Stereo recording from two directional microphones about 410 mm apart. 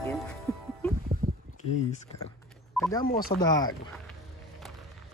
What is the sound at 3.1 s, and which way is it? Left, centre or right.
Speech, left.